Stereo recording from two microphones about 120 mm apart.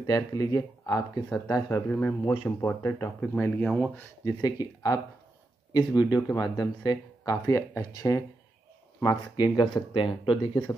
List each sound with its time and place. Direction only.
0.0 s speech: 30° left (ahead or behind); by 4.0 s 10° left (ahead or behind)
4.2 s speech: 35° left (ahead or behind)
9.0 s speech: 40° left (ahead or behind)